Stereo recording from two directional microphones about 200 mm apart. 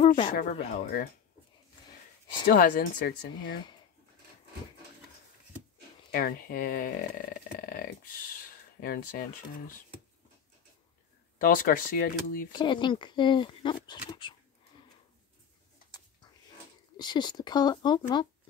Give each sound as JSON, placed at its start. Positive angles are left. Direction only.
{"t": 0.0, "sound": "a sound", "side_deg": 30}
{"t": 0.3, "sound": "speech", "side_deg": 45}
{"t": 2.4, "sound": "speech", "side_deg": 45}
{"t": 6.1, "sound": "speech", "side_deg": 45}
{"t": 11.3, "sound": "speech", "side_deg": 45}
{"t": 12.5, "sound": "speech", "side_deg": 25}
{"t": 16.9, "sound": "speech", "side_deg": 20}